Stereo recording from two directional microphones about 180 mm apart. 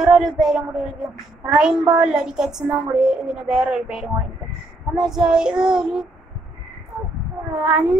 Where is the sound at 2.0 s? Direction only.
5° right (ahead or behind).